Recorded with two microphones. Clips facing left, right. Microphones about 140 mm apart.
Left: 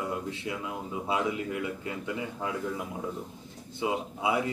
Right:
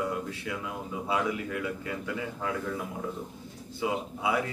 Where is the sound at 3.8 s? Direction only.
20° left (ahead or behind).